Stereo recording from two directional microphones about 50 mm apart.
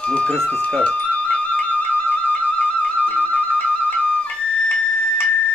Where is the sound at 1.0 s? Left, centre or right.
Left.